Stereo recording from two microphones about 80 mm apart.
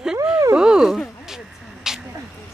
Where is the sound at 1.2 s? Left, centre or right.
Centre.